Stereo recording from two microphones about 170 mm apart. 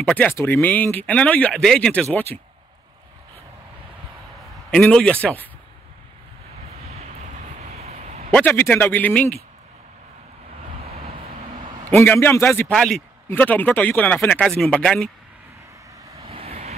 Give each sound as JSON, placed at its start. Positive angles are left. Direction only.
{"t": 0.0, "sound": "a man's voice", "side_deg": 5}
{"t": 4.6, "sound": "a man's voice", "side_deg": 5}
{"t": 6.7, "sound": "vehicle", "side_deg": -35}
{"t": 7.7, "sound": "a sound", "side_deg": -35}
{"t": 8.3, "sound": "a man's voice", "side_deg": 10}
{"t": 10.8, "sound": "vehicle", "side_deg": -35}
{"t": 12.0, "sound": "a man's voice", "side_deg": 15}
{"t": 16.2, "sound": "vehicle", "side_deg": -35}